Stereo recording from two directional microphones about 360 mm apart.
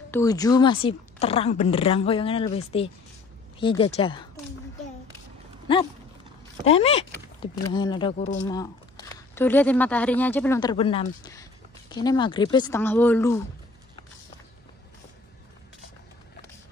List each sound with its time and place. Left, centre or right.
0.1 s speech: centre
6.7 s speech: centre